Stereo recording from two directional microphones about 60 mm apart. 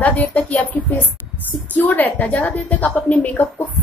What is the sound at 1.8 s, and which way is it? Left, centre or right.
A woman's voice, left.